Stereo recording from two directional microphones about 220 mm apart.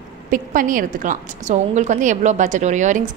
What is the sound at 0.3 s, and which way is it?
A woman's voice, 40° right (ahead or behind).